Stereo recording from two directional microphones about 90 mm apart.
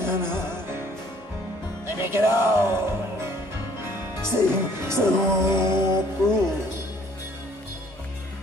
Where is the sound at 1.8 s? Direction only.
25° right (ahead or behind).